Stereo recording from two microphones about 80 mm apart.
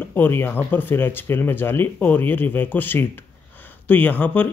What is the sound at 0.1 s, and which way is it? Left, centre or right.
Speech, left.